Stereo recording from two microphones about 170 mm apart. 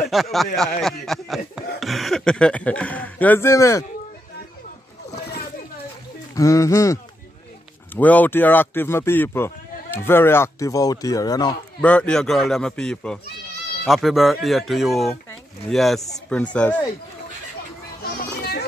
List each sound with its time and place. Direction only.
0.1 s speech: centre (ahead or behind); by 3.8 s 15° left (ahead or behind)
6.3 s speech: 20° left (ahead or behind)
11.8 s speech: 5° left (ahead or behind)
18.0 s children playing: 70° left (ahead or behind)